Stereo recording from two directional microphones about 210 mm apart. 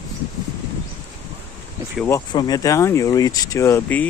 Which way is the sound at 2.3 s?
20° left (ahead or behind).